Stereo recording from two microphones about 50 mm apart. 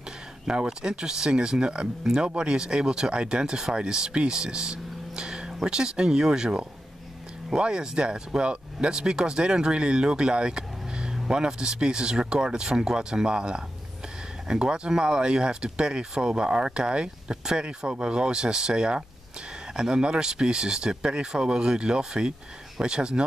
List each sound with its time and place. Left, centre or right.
0.5 s speech: centre